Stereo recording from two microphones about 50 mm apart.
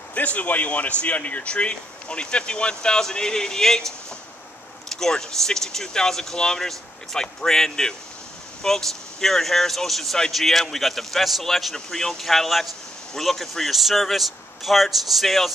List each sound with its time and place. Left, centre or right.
0.1 s speech: left; by 15.5 s centre